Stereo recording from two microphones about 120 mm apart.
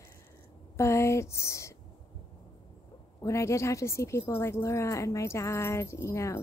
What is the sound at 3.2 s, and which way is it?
A woman's voice, 25° left (ahead or behind).